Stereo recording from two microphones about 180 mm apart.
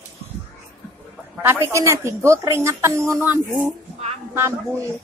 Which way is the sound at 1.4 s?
15° right (ahead or behind).